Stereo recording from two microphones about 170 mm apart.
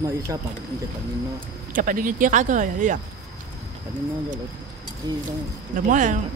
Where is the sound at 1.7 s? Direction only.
50° right (ahead or behind).